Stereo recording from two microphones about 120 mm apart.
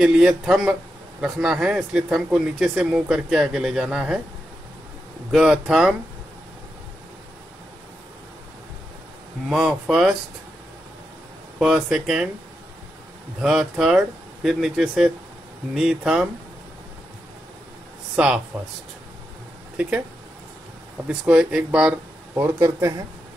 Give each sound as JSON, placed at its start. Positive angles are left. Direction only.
{"t": 0.0, "sound": "speech", "side_deg": -5}
{"t": 5.3, "sound": "speech", "side_deg": -5}
{"t": 9.5, "sound": "speech", "side_deg": -5}
{"t": 11.6, "sound": "speech", "side_deg": -5}
{"t": 13.4, "sound": "speech", "side_deg": -5}
{"t": 18.1, "sound": "speech", "side_deg": -10}
{"t": 19.8, "sound": "speech", "side_deg": -10}
{"t": 21.1, "sound": "speech", "side_deg": -10}
{"t": 22.3, "sound": "speech", "side_deg": -25}